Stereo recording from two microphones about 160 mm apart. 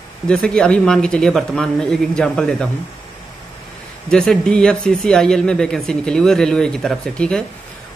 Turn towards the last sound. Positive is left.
turn(degrees=5)  # may be behind; listen again after turning